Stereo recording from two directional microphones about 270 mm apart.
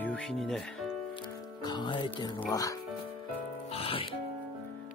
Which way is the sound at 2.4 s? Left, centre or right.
Centre.